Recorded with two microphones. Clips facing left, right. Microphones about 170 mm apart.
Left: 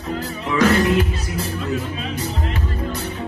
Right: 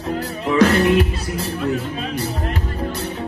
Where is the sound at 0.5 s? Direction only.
35° right (ahead or behind).